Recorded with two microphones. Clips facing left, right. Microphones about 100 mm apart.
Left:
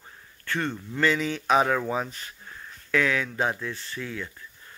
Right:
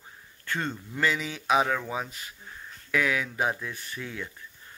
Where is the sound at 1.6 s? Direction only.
5° left (ahead or behind).